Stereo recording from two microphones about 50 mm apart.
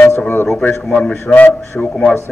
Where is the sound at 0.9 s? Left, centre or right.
Left.